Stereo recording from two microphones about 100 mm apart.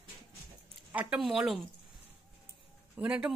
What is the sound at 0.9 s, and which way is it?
Speech, 15° right (ahead or behind).